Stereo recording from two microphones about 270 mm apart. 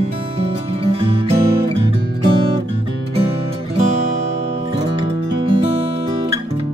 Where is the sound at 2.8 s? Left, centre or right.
Right.